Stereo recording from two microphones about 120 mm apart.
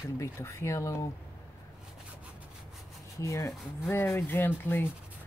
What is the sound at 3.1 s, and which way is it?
Speech, 25° left (ahead or behind).